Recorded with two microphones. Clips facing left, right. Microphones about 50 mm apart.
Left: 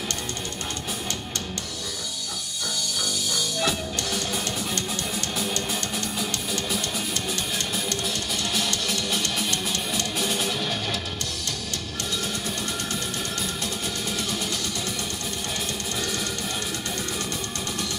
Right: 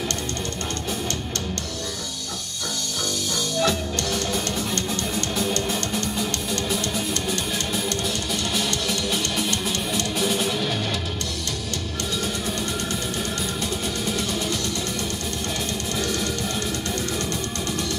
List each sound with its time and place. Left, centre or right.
3.5 s music: centre